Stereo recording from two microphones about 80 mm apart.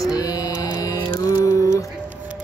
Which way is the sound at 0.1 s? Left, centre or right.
Left.